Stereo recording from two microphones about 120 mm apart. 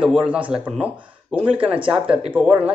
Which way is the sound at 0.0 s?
10° right (ahead or behind).